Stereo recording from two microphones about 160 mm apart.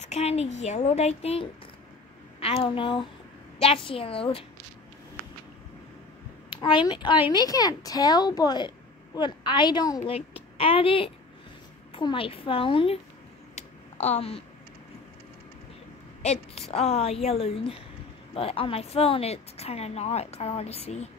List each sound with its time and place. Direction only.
0.0 s a woman's voice: 40° left (ahead or behind)
6.5 s speech: 30° left (ahead or behind)
10.1 s a woman's voice: 35° left (ahead or behind)
13.6 s a sound: 40° left (ahead or behind)
16.2 s a woman's voice: 40° left (ahead or behind)